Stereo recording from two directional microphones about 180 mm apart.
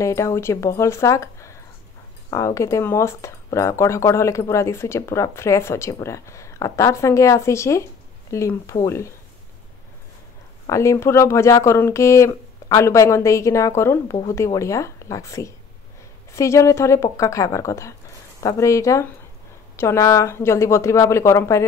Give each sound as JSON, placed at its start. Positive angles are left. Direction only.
{"t": 0.0, "sound": "speech", "side_deg": 15}
{"t": 10.7, "sound": "speech", "side_deg": 15}